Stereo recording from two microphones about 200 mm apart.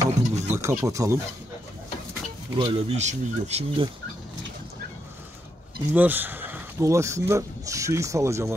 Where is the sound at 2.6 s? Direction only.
25° right (ahead or behind).